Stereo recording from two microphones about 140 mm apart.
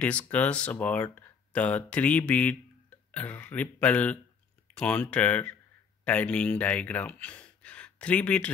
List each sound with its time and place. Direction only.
0.0 s speech: 10° left (ahead or behind)